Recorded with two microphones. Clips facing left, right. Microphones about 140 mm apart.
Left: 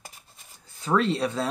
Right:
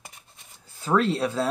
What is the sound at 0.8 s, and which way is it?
Speech, 5° right (ahead or behind).